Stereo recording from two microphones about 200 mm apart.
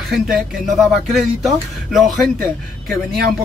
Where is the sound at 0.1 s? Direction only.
Centre (ahead or behind).